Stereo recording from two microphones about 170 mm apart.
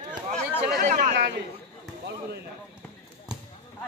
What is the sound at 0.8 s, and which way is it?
Chatter, 50° right (ahead or behind).